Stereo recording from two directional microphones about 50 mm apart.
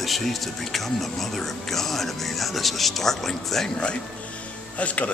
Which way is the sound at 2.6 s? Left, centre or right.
Centre.